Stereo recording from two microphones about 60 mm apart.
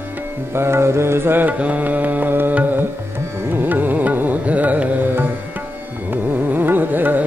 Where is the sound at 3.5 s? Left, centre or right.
Right.